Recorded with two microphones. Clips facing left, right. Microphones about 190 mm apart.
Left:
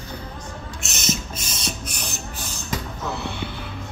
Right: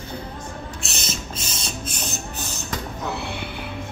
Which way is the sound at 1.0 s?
30° right (ahead or behind).